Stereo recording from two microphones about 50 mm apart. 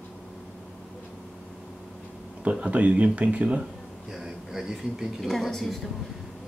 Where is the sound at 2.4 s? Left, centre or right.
Right.